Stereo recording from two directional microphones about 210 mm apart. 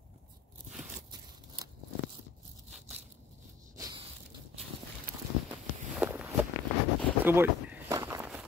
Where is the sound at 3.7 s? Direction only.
15° right (ahead or behind).